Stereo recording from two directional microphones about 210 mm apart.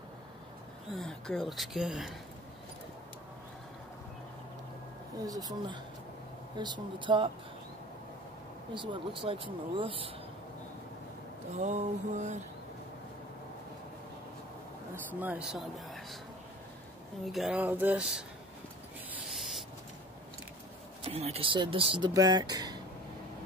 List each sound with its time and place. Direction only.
0.9 s speech: centre (ahead or behind)
5.2 s speech: 15° right (ahead or behind)
8.7 s speech: 25° right (ahead or behind)
11.5 s a sound: 35° right (ahead or behind)
15.1 s speech: 5° right (ahead or behind)
17.3 s speech: centre (ahead or behind)
19.1 s owl: centre (ahead or behind)
21.0 s speech: 30° right (ahead or behind)